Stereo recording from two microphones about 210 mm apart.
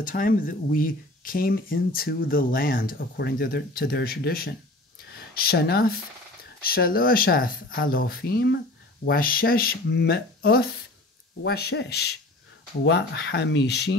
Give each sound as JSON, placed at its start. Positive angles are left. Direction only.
{"t": 0.0, "sound": "speech", "side_deg": 40}